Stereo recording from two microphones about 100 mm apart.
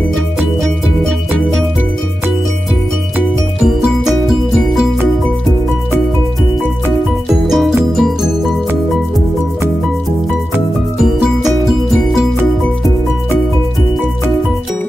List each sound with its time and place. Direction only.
4.3 s music: 5° right (ahead or behind)
7.2 s music: centre (ahead or behind)
11.4 s music: centre (ahead or behind)